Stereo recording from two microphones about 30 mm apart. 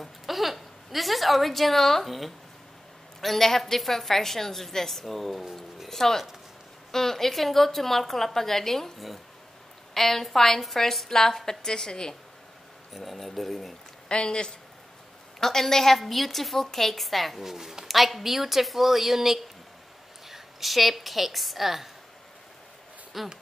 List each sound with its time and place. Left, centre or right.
0.0 s a woman's voice: centre
2.0 s a woman's voice: centre
3.2 s a woman's voice: centre
9.9 s a woman's voice: centre
12.9 s a woman's voice: centre
14.0 s speech: left
15.4 s a woman's voice: centre
17.4 s a woman's voice: centre
23.1 s a woman's voice: centre